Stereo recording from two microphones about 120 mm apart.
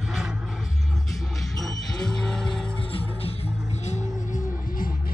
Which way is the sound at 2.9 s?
50° left (ahead or behind).